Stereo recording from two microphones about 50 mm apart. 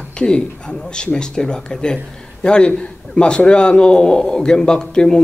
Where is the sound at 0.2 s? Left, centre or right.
Centre.